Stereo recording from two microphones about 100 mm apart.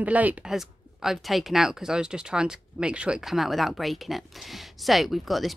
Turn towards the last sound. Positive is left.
turn(degrees=0)  # may be behind; listen again after turning